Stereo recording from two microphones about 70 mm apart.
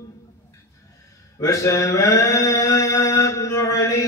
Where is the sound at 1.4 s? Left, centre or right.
Left.